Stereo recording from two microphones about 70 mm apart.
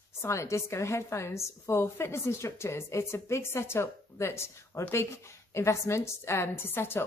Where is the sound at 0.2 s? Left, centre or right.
Left.